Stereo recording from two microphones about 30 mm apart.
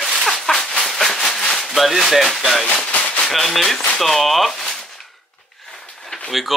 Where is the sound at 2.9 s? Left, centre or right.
Left.